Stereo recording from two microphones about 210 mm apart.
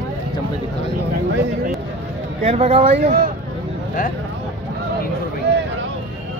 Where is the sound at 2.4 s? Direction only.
30° right (ahead or behind).